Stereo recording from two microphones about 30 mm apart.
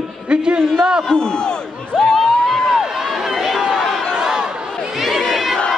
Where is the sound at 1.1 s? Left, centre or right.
Left.